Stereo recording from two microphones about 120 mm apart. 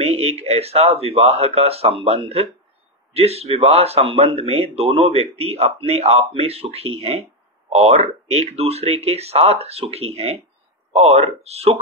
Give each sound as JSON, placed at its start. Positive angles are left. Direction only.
{"t": 0.0, "sound": "speech", "side_deg": -60}